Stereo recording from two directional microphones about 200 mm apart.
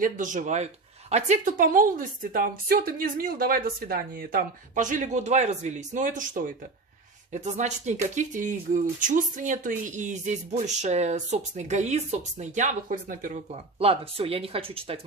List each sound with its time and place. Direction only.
0.0 s speech: 40° right (ahead or behind)
13.7 s speech: 30° right (ahead or behind)